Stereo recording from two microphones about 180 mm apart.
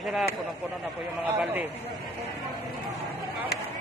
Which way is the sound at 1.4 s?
10° right (ahead or behind).